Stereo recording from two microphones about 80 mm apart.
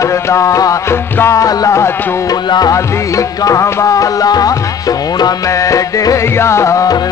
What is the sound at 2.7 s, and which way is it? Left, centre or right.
Music, left.